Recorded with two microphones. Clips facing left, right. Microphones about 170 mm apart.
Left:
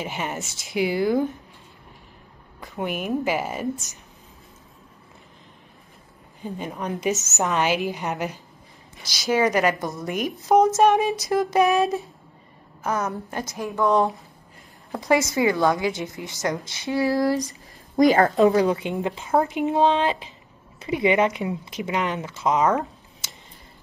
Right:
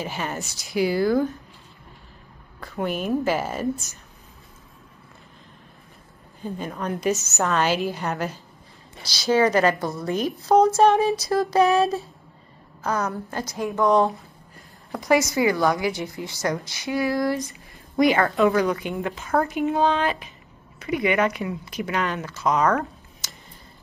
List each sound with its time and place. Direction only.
0.0 s speech: 20° left (ahead or behind)
2.6 s a woman's voice: 15° left (ahead or behind)
6.4 s a woman's voice: 15° left (ahead or behind)
13.6 s speech: 15° right (ahead or behind)
14.9 s a woman's voice: 25° left (ahead or behind)
17.0 s speech: 35° left (ahead or behind)